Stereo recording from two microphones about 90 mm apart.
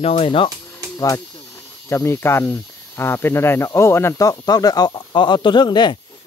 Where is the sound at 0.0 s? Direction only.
85° left.